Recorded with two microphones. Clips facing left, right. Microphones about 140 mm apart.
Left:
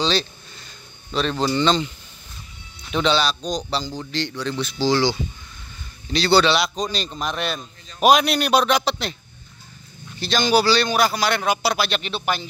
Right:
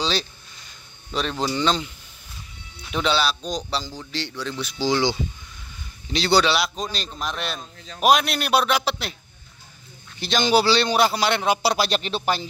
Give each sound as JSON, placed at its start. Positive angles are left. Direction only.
{"t": 0.0, "sound": "a sound", "side_deg": -10}
{"t": 1.1, "sound": "a man's voice", "side_deg": -10}
{"t": 6.1, "sound": "a man's voice", "side_deg": -15}
{"t": 10.1, "sound": "a man's voice", "side_deg": -20}